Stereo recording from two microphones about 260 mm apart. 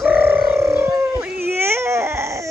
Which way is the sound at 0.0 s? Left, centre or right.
Centre.